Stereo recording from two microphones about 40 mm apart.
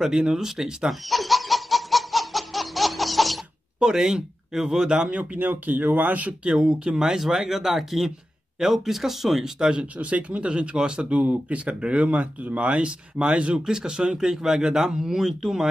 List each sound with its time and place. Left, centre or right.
0.0 s speech: centre
1.0 s laughter: centre
3.8 s speech: centre
5.4 s speech: right
6.4 s speech: centre
7.1 s speech: centre
9.6 s speech: right
9.9 s speech: right
12.8 s speech: right